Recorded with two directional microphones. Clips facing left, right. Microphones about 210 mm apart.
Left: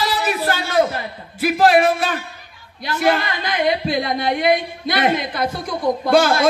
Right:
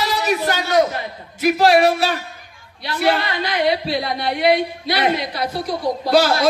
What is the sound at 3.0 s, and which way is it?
A man's voice, 45° left (ahead or behind).